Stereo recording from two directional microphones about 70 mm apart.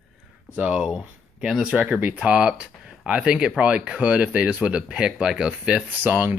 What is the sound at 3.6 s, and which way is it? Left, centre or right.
Speech, right.